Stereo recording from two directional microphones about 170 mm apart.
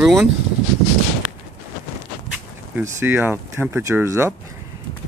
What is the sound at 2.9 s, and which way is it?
Speech, 10° right (ahead or behind).